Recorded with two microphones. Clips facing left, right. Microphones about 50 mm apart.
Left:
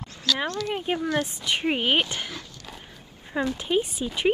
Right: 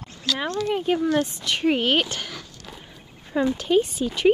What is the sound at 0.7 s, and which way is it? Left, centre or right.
Speech, centre.